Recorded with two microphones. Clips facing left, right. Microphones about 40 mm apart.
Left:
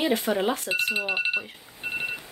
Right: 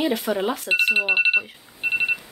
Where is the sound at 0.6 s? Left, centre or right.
Right.